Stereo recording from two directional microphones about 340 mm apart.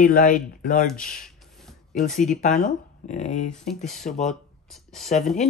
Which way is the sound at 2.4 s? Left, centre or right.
Left.